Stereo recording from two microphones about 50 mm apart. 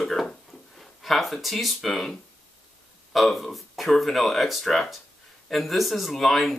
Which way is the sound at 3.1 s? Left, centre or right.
Centre.